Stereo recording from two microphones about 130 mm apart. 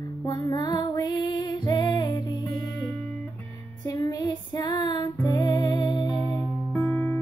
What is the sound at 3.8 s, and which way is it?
Female singing, 30° left (ahead or behind).